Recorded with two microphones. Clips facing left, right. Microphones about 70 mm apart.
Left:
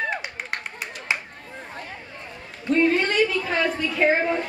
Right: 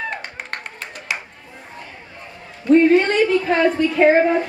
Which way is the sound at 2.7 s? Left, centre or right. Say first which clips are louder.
Right 7 dB; right.